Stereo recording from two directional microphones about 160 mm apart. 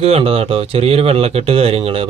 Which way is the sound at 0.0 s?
40° right (ahead or behind).